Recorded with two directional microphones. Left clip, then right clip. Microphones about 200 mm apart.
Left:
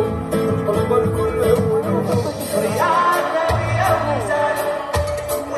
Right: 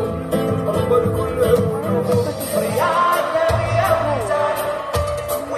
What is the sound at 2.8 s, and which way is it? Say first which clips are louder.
Music: left 1 dB; 25° left (ahead or behind).